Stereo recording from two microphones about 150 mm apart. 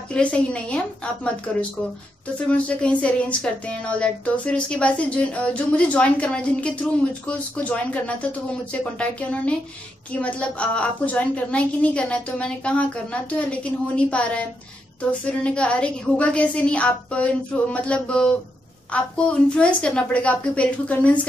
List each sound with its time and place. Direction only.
0.1 s speech: 5° left (ahead or behind)
2.5 s speech: 10° left (ahead or behind)
10.2 s speech: 10° left (ahead or behind)